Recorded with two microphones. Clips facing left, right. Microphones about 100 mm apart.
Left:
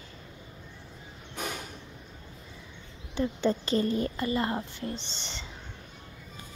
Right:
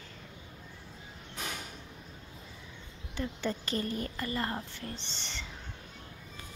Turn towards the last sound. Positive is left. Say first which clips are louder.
# left 3 dB
turn(degrees=20)  # may be behind; listen again after turning